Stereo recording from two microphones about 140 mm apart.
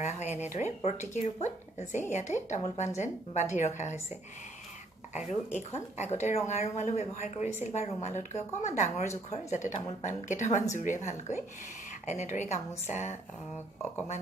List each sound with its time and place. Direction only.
0.0 s speech: 55° left (ahead or behind)
5.1 s speech: 55° left (ahead or behind)